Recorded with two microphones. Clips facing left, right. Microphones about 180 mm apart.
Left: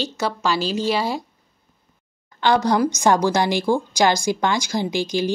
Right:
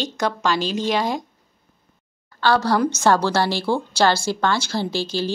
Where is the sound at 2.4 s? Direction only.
20° left (ahead or behind).